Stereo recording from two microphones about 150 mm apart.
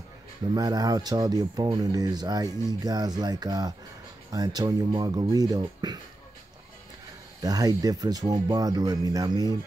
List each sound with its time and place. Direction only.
0.6 s speech: 25° right (ahead or behind)
7.4 s speech: 25° right (ahead or behind)